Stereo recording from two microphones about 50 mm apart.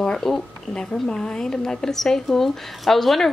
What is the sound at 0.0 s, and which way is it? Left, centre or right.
A woman's voice, centre.